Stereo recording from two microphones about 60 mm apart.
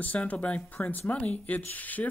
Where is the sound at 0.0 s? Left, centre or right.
Left.